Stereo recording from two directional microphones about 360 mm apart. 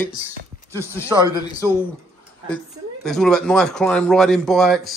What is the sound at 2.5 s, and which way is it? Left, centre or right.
Speech, centre.